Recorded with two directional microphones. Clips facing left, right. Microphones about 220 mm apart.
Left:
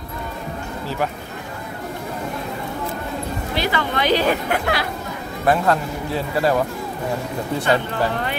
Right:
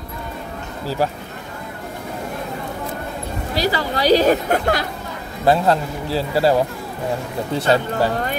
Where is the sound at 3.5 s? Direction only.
35° right (ahead or behind).